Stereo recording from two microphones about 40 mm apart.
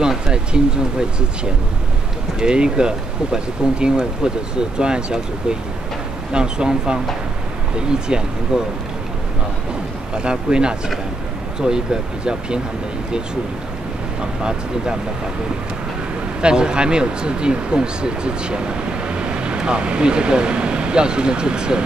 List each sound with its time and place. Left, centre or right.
0.3 s speech: right
8.1 s speech: right
10.1 s speech: right
16.3 s speech: right